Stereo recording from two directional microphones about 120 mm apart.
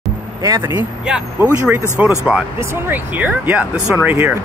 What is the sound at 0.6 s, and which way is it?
Speech, 20° right (ahead or behind).